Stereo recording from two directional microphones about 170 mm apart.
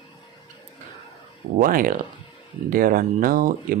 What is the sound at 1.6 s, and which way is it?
Speech, 55° right (ahead or behind).